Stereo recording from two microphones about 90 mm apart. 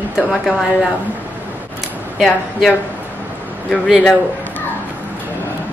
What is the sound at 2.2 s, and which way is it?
Speech, 5° left (ahead or behind).